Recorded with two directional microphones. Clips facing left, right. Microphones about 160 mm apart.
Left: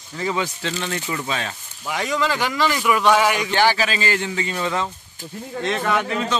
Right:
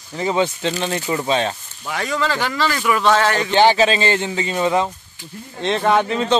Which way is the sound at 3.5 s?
20° right (ahead or behind).